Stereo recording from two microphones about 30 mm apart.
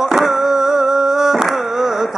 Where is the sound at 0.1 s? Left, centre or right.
Centre.